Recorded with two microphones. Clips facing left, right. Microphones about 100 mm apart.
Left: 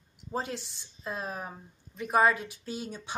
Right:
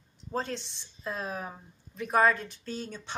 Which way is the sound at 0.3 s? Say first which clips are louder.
Right 1 dB; 10° left (ahead or behind).